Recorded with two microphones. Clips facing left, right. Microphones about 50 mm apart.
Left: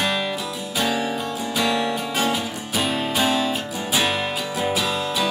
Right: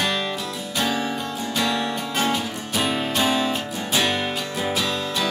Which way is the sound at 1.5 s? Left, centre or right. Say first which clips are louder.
Left 2 dB; centre.